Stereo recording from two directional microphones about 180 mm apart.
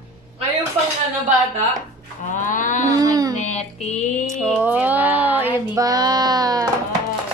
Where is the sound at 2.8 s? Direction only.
20° right (ahead or behind).